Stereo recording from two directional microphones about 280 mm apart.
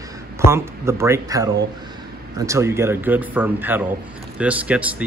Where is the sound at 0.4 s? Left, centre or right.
Centre.